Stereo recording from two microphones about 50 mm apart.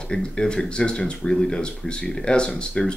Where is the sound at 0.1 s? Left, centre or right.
Centre.